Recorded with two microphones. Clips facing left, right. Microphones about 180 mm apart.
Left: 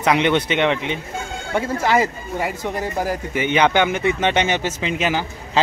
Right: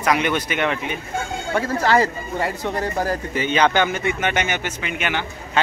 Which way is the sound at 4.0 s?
25° left (ahead or behind).